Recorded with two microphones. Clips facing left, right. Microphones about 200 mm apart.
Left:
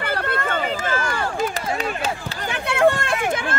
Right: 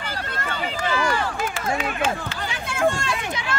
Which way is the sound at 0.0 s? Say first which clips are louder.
Left 6 dB; 55° left (ahead or behind).